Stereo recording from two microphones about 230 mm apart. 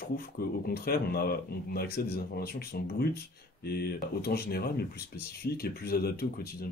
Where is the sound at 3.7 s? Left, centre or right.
Left.